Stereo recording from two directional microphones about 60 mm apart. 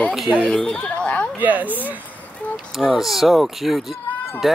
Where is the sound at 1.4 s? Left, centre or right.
Right.